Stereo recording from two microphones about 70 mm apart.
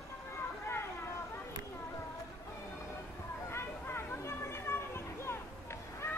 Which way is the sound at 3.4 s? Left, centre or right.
Left.